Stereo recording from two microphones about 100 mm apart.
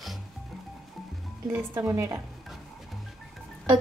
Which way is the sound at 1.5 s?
25° right (ahead or behind).